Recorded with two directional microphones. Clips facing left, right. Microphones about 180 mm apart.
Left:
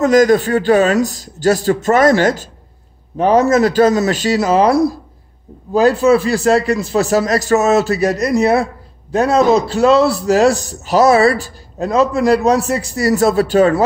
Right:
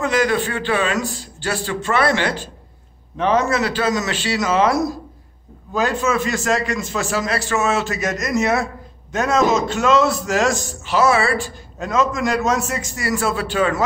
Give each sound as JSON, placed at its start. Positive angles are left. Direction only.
{"t": 0.0, "sound": "a man's voice", "side_deg": 40}